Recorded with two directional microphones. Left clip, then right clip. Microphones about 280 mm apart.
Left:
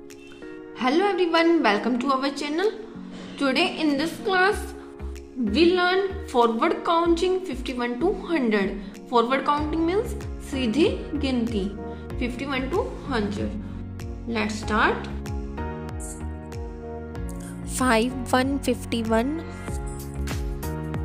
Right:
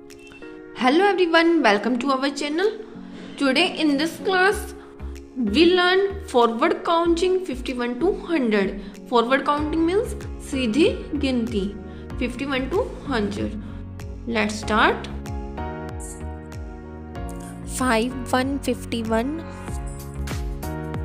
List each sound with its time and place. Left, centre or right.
0.7 s a woman's voice: centre
17.7 s a woman's voice: centre